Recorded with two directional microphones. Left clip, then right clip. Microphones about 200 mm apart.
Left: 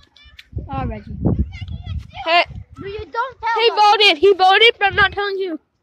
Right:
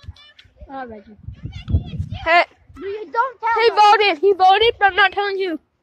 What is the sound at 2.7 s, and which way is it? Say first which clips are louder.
Speech: right 2 dB; 20° left (ahead or behind).